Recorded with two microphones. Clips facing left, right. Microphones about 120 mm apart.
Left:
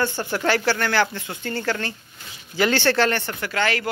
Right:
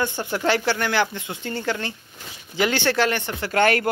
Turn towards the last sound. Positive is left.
turn(degrees=-55)  # may be behind; listen again after turning